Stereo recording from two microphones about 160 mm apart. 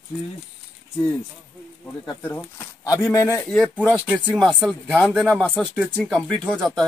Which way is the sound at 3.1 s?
15° left (ahead or behind).